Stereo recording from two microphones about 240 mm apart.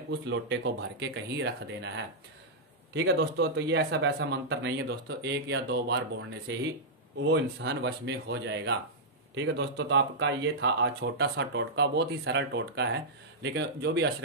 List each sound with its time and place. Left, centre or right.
0.1 s speech: right
2.9 s speech: right